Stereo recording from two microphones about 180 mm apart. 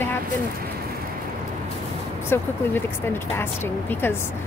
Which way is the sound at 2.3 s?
15° left (ahead or behind).